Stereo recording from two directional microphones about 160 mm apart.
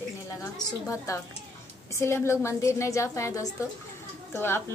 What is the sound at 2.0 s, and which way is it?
A woman's voice, 15° left (ahead or behind).